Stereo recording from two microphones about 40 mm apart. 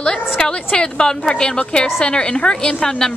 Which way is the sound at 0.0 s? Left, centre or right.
Left.